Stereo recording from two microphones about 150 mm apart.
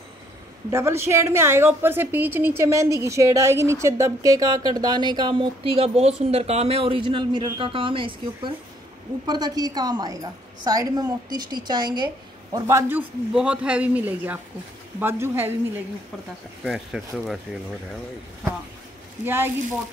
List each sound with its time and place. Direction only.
0.7 s a woman's voice: 20° right (ahead or behind)
12.5 s a man's voice: 20° right (ahead or behind)
16.6 s speech: centre (ahead or behind)
19.2 s a man's voice: 15° right (ahead or behind)